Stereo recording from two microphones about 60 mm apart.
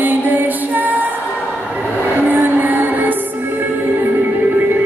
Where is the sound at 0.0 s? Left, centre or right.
Right.